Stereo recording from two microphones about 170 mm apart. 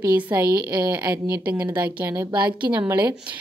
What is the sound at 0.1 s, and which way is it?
Speech, 10° right (ahead or behind).